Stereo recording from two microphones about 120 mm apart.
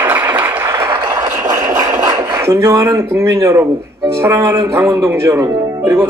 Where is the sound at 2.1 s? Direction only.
25° right (ahead or behind).